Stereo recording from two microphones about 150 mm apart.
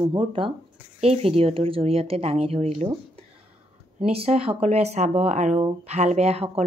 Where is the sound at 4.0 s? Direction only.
40° right (ahead or behind).